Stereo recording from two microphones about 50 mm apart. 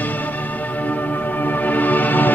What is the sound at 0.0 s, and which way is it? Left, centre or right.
Music, left.